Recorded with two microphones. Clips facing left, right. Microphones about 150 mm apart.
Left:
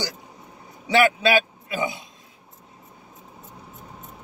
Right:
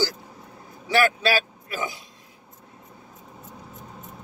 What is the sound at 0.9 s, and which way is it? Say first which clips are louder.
A man's voice: left 3 dB; 20° left (ahead or behind).